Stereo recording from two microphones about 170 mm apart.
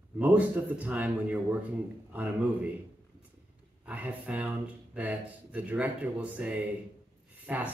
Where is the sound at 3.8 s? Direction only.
10° right (ahead or behind).